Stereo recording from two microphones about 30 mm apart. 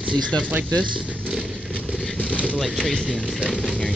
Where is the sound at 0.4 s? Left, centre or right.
Right.